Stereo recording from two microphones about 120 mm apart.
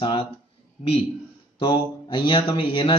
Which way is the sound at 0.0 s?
50° left (ahead or behind).